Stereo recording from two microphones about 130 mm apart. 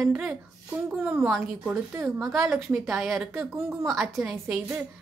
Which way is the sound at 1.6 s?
20° right (ahead or behind).